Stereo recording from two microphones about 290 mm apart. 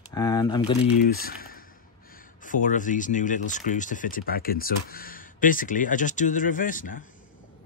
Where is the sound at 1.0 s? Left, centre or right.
Left.